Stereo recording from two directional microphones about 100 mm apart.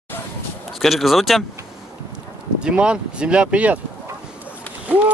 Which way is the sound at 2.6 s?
10° right (ahead or behind).